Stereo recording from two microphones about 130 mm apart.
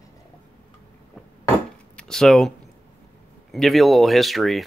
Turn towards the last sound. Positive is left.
turn(degrees=0)  # may be behind; listen again after turning